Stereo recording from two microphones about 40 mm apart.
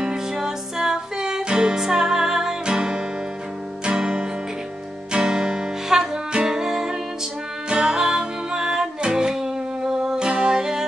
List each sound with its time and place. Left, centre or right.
0.0 s music: centre